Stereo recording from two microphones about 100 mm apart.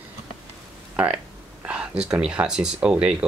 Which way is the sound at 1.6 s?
10° right (ahead or behind).